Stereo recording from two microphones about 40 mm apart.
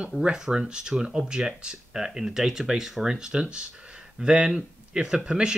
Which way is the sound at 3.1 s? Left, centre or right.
Centre.